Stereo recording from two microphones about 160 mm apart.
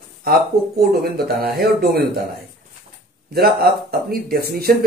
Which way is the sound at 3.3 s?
75° right (ahead or behind).